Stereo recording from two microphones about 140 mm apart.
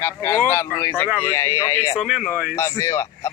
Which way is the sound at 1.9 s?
Centre (ahead or behind).